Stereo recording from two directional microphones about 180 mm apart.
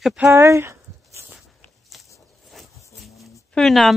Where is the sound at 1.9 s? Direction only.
Centre (ahead or behind).